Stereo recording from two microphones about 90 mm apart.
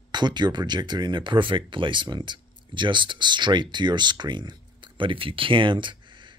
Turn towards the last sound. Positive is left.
turn(degrees=-60)  # may be behind; listen again after turning